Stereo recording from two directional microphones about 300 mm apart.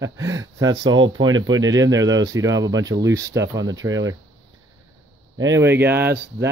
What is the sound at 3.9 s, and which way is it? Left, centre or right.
Speech, right.